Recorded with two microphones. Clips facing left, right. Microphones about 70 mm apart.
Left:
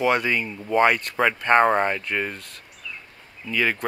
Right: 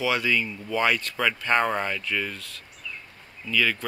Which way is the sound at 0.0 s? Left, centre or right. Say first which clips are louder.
Left 4 dB; left.